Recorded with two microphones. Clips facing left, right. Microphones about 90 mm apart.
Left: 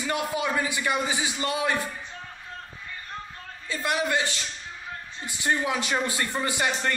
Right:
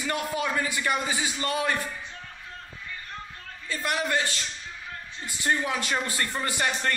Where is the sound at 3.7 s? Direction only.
20° left (ahead or behind).